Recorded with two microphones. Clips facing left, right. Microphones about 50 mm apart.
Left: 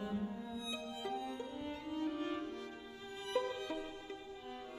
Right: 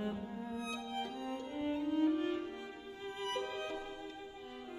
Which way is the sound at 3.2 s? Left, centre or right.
Right.